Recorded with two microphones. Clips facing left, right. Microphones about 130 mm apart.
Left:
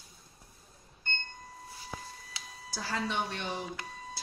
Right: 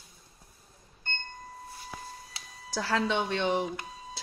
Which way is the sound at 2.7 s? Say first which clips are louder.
Right 6 dB; 70° right (ahead or behind).